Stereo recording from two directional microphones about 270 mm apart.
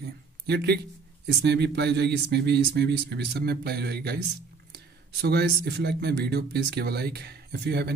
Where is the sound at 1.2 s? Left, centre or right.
Right.